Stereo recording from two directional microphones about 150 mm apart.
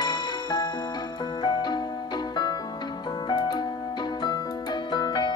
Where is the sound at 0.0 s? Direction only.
30° left (ahead or behind).